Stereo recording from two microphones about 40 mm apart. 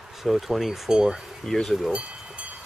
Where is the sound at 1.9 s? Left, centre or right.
Right.